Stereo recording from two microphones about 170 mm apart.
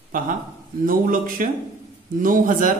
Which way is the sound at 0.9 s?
55° right (ahead or behind).